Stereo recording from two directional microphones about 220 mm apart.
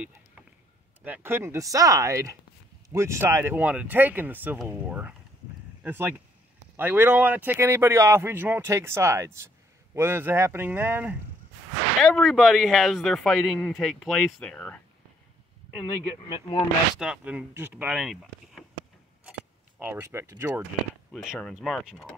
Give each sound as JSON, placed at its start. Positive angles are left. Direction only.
{"t": 1.0, "sound": "speech", "side_deg": -10}
{"t": 15.9, "sound": "speech", "side_deg": 20}
{"t": 17.0, "sound": "speech", "side_deg": -5}
{"t": 19.8, "sound": "speech", "side_deg": -10}
{"t": 21.1, "sound": "speech", "side_deg": 0}